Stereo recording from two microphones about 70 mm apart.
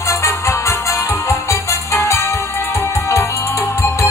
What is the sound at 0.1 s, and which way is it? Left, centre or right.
Music, left.